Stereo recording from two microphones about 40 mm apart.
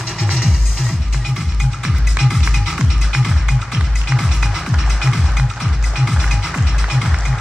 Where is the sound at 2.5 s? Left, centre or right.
Centre.